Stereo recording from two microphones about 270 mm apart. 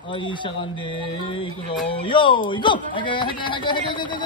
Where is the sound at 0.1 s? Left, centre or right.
Centre.